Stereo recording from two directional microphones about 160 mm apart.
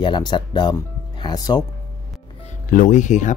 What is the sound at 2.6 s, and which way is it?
Speech, 55° left (ahead or behind).